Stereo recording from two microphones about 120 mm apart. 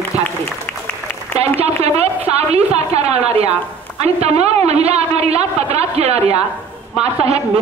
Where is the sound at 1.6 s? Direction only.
60° right (ahead or behind).